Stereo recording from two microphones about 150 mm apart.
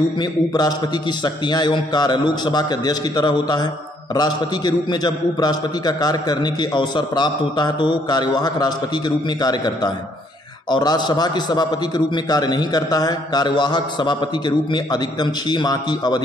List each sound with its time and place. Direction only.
1.2 s a man's voice: 30° left (ahead or behind)
15.5 s a man's voice: 25° left (ahead or behind)